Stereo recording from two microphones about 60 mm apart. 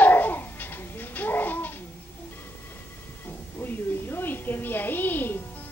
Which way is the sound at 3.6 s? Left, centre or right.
Left.